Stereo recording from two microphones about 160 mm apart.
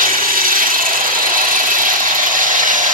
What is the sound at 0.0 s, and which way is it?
Wood, 60° right (ahead or behind).